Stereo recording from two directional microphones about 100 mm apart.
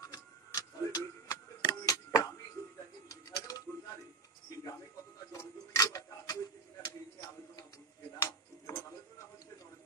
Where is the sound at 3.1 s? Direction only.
35° left (ahead or behind).